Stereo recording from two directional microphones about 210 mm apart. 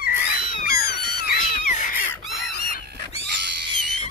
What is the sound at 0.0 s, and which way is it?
Cat, 45° left (ahead or behind).